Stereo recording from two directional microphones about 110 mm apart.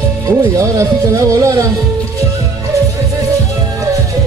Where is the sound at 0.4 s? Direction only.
30° right (ahead or behind).